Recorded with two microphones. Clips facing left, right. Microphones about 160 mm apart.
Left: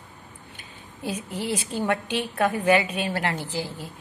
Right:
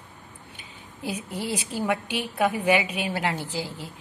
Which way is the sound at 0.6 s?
10° right (ahead or behind).